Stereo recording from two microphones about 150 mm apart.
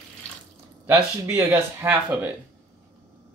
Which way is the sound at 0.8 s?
20° right (ahead or behind).